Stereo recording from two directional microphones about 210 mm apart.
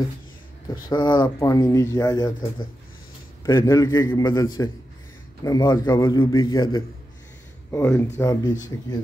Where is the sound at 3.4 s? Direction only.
15° left (ahead or behind).